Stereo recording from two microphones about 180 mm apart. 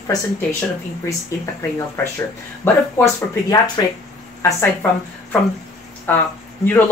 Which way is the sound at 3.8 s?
20° left (ahead or behind).